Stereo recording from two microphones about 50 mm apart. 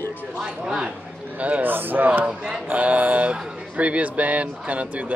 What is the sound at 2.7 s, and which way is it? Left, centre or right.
Speech, right.